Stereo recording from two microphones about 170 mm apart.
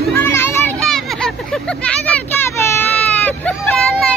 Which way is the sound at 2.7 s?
10° left (ahead or behind).